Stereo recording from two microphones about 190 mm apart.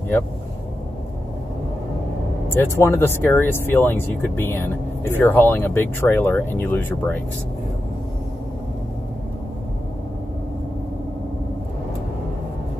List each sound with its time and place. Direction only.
2.5 s speech: 15° left (ahead or behind)